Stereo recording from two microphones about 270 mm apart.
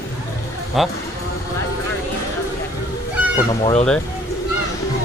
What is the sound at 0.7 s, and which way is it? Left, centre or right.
Speech, centre.